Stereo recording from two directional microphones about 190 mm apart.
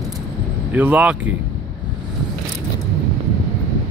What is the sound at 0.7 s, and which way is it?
Speech, 5° right (ahead or behind).